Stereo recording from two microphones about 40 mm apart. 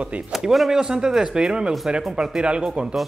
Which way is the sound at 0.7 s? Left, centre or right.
Centre.